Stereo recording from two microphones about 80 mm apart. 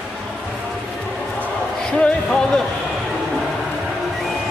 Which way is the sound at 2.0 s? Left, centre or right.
Centre.